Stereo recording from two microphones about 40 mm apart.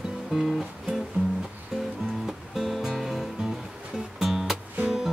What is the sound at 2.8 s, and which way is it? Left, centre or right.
Music, centre.